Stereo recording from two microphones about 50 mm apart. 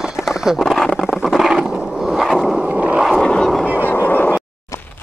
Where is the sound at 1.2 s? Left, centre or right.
Centre.